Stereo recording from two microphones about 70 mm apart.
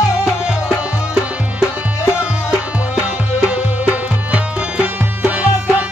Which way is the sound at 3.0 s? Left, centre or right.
Centre.